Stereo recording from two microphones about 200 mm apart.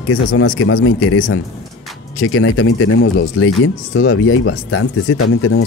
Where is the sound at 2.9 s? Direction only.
70° left (ahead or behind); by 5.6 s 90° left.